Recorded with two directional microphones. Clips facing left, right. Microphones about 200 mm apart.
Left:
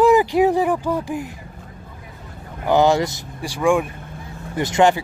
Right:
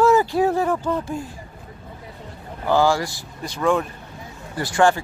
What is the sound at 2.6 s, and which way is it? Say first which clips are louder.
Speech: left 3 dB; 20° left (ahead or behind).